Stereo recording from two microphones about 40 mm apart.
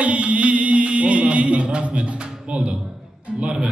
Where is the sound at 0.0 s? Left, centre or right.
Right.